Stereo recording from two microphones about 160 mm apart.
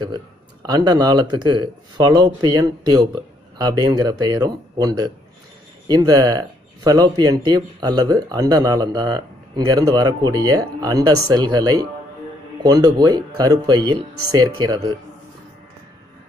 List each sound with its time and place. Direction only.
0.0 s speech: 25° right (ahead or behind)